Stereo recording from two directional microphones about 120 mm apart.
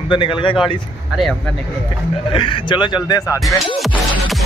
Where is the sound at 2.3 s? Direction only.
45° left (ahead or behind).